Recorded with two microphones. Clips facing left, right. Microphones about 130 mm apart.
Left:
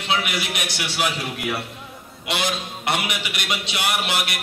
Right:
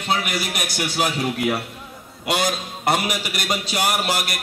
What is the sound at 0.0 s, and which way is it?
A man's voice, 45° right (ahead or behind).